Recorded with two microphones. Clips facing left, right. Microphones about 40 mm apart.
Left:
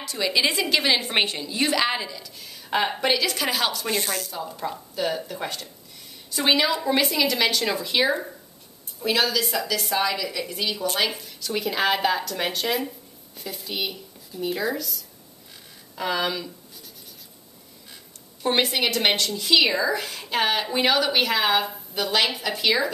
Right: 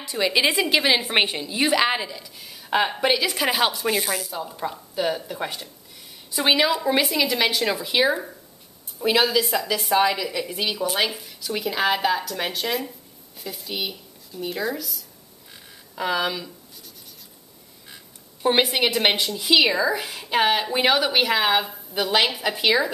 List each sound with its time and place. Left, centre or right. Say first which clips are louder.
0.0 s a woman's voice: right 2 dB; centre
9.0 s a woman's voice: right 3 dB; right; by 16.4 s centre
18.4 s a woman's voice: right 2 dB; centre